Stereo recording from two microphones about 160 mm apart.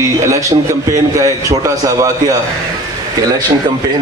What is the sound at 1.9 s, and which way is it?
Speech, 20° right (ahead or behind).